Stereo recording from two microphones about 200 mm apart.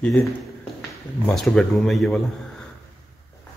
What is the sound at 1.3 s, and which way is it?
Speech, centre (ahead or behind).